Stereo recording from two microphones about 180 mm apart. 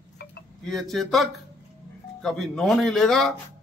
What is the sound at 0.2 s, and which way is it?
Wind chime, 65° left (ahead or behind).